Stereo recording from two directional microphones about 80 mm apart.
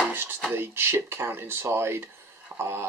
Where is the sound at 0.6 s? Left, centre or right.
Right.